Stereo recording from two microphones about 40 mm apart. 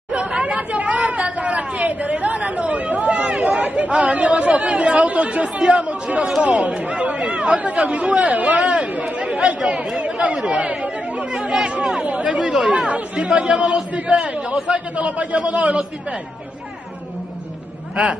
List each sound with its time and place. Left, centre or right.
0.1 s chatter: right
3.6 s speech: right
6.4 s speech: right
9.2 s chatter: right
9.9 s speech: right
10.4 s chatter: right
12.0 s speech: right
12.5 s speech: centre
12.8 s speech: right